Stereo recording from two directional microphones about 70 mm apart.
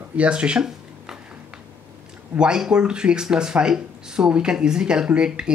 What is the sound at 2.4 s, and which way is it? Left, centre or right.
Speech, centre.